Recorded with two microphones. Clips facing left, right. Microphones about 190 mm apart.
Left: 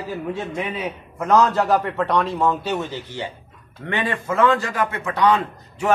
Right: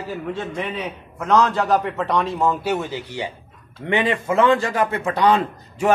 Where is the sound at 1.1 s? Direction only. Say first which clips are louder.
Left 1 dB; centre (ahead or behind); by 5.4 s 30° right (ahead or behind).